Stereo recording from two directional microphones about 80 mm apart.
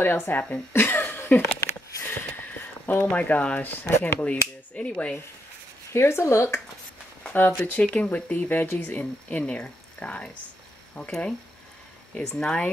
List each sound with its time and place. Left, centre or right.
0.0 s speech: left
2.9 s speech: left
5.9 s speech: left
7.3 s speech: left
12.4 s speech: centre